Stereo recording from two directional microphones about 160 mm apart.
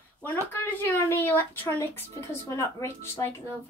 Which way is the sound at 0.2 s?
10° left (ahead or behind).